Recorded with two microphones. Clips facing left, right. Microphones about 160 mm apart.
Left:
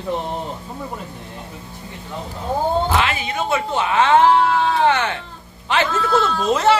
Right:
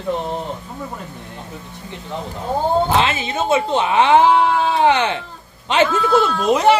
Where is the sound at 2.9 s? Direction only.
25° right (ahead or behind).